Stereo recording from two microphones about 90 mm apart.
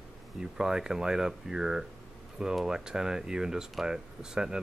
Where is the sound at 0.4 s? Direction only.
5° right (ahead or behind).